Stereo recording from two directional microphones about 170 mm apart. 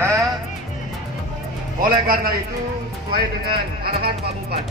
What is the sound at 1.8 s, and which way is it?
Speech, 55° right (ahead or behind).